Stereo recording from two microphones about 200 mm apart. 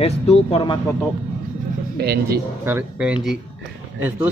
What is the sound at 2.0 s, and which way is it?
Speech, 50° right (ahead or behind).